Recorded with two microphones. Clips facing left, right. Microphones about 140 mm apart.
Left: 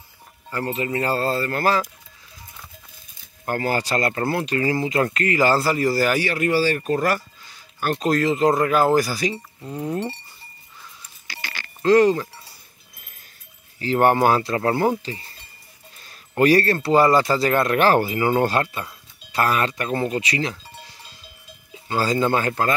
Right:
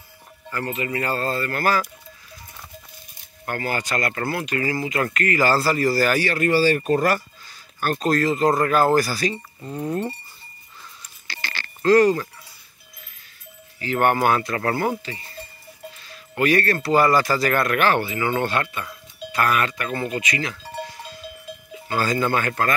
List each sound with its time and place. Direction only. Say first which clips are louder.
0.5 s speech: left 2 dB; 30° left (ahead or behind)
3.4 s speech: left 3 dB; 35° left (ahead or behind); by 6.6 s 10° left (ahead or behind)
6.6 s speech: right 2 dB; centre (ahead or behind)
7.4 s speech: left 1 dB; 20° left (ahead or behind)
9.3 s speech: even; centre (ahead or behind)
11.2 s a sound: right 2 dB; 10° left (ahead or behind)
13.7 s speech: left 3 dB; 30° left (ahead or behind)
15.1 s speech: left 2 dB; 35° left (ahead or behind)
16.1 s music: left 4 dB; 35° left (ahead or behind)
16.7 s speech: left 2 dB; 25° left (ahead or behind)
21.8 s speech: left 2 dB; 25° left (ahead or behind)